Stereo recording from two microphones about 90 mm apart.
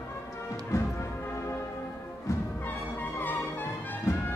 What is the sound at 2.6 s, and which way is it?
Music, 20° left (ahead or behind).